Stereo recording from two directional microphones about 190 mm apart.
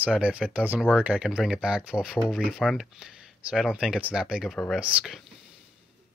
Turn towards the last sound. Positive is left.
turn(degrees=-5)  # may be behind; listen again after turning